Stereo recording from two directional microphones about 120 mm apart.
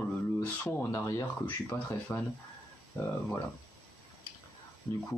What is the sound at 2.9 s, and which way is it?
Speech, 25° left (ahead or behind).